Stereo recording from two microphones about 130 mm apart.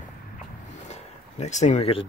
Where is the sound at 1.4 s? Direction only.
65° left (ahead or behind).